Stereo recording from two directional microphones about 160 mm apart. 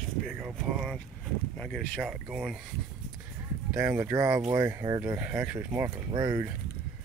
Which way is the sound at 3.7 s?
15° right (ahead or behind).